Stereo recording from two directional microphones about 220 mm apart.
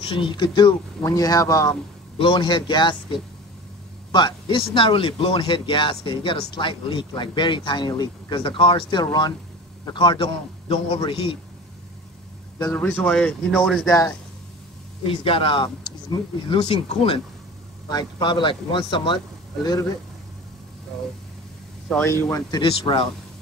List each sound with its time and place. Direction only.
0.0 s speech: 25° left (ahead or behind)
12.7 s speech: 5° left (ahead or behind)
15.0 s speech: 25° left (ahead or behind)
21.8 s speech: 10° left (ahead or behind)